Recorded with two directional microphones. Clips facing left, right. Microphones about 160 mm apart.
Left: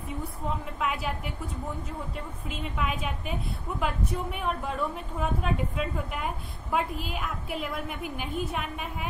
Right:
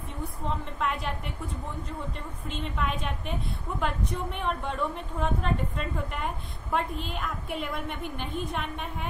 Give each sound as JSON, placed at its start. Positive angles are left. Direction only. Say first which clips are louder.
{"t": 0.5, "sound": "a woman's voice", "louder": "even", "side_deg": 5}